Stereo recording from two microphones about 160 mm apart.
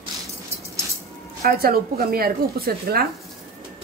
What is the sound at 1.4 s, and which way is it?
Speech, 70° right (ahead or behind).